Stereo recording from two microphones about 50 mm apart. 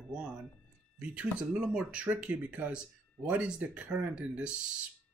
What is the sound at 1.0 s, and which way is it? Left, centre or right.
Speech, right.